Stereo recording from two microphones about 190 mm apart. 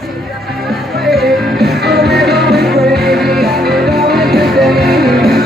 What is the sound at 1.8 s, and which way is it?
Music, 60° right (ahead or behind).